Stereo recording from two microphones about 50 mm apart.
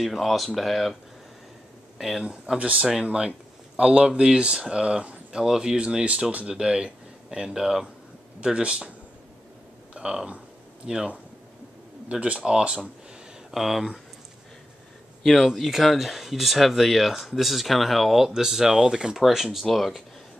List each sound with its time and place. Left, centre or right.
0.0 s speech: centre
2.0 s speech: centre
2.2 s speech: centre
9.9 s speech: centre
13.5 s speech: centre
15.4 s speech: centre